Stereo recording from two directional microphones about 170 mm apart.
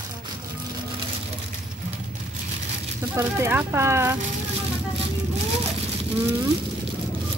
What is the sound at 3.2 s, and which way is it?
Speech, 15° right (ahead or behind).